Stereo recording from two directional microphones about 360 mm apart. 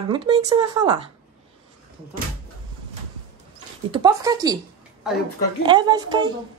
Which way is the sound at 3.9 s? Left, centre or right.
Centre.